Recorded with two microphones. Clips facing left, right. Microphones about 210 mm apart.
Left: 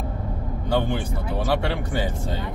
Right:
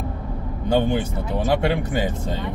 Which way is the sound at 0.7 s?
20° right (ahead or behind).